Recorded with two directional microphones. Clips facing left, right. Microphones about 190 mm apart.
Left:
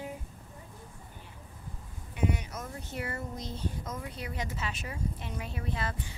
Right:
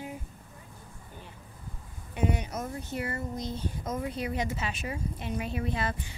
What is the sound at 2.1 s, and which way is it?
Speech, 25° right (ahead or behind).